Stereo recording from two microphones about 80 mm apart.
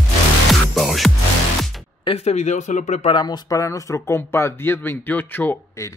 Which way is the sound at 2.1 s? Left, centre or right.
Left.